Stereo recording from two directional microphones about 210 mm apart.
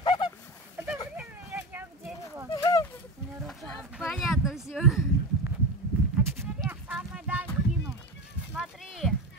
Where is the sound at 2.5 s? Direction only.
15° left (ahead or behind).